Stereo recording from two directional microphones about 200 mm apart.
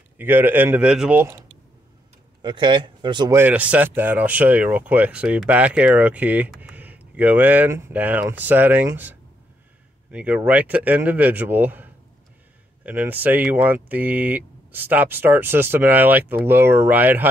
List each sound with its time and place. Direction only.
0.2 s speech: 10° right (ahead or behind)
2.4 s speech: 25° right (ahead or behind)
10.1 s speech: 5° right (ahead or behind)